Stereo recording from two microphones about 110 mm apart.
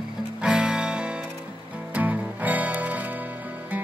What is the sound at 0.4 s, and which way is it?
Music, 5° right (ahead or behind).